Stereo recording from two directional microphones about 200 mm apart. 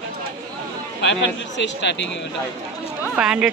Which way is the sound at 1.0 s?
65° left (ahead or behind).